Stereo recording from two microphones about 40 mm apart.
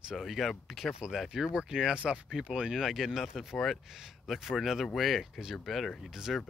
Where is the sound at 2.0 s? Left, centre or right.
Right.